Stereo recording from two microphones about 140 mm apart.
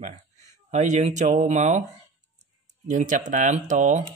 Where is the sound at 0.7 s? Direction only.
55° right (ahead or behind).